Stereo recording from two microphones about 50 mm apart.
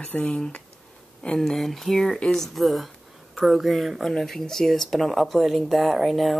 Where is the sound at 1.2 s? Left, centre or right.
Centre.